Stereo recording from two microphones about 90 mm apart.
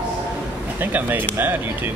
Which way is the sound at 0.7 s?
20° right (ahead or behind).